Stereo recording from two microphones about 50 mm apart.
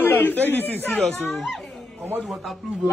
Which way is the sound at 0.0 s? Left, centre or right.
Left.